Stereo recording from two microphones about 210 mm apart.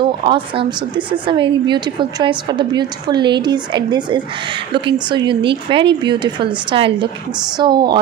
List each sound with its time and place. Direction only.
0.2 s a woman's voice: 25° right (ahead or behind)